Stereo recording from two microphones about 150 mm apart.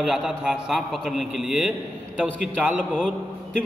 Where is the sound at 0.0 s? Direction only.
5° right (ahead or behind).